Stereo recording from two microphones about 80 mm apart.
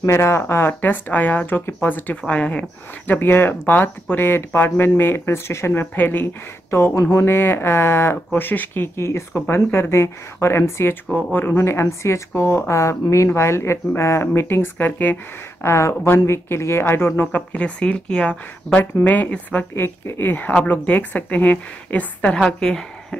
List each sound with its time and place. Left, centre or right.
0.0 s speech: left; by 2.6 s centre
3.1 s speech: left
15.6 s speech: left
17.5 s speech: centre